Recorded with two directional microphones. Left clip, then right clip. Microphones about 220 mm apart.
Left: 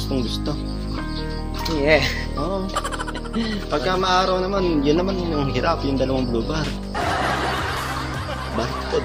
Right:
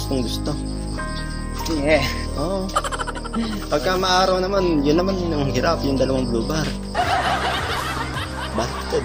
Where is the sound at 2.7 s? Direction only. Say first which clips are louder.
Right 2 dB; centre (ahead or behind).